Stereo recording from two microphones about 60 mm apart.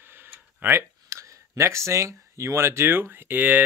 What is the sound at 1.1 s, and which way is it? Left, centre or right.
Speech, right.